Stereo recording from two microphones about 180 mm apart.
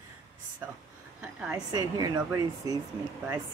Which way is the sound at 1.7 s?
20° right (ahead or behind).